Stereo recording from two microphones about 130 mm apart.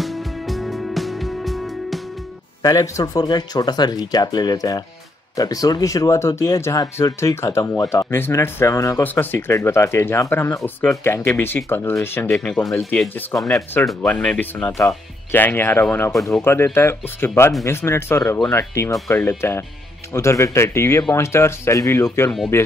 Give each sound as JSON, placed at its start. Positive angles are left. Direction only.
{"t": 0.0, "sound": "music", "side_deg": 0}
{"t": 2.6, "sound": "speech", "side_deg": 25}
{"t": 12.3, "sound": "speech", "side_deg": 5}
{"t": 14.8, "sound": "speech", "side_deg": 20}